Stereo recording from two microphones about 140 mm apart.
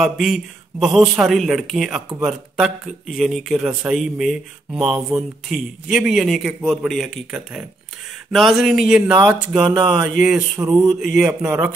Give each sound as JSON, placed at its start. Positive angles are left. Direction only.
{"t": 0.0, "sound": "speech", "side_deg": 0}
{"t": 10.5, "sound": "a sound", "side_deg": -25}
{"t": 11.0, "sound": "speech", "side_deg": -5}